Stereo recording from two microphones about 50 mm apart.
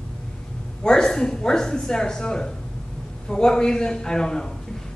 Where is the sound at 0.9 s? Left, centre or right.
Centre.